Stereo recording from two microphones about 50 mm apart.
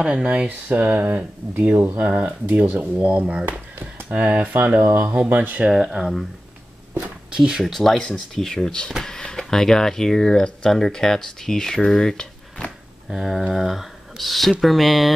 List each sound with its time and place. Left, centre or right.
0.0 s speech: right
0.5 s speech: right
5.7 s speech: centre
6.9 s a sound: centre
7.7 s speech: centre
13.1 s speech: centre